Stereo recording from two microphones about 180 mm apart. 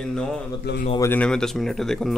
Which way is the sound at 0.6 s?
65° left (ahead or behind).